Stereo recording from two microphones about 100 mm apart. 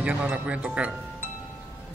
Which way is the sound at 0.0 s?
10° right (ahead or behind).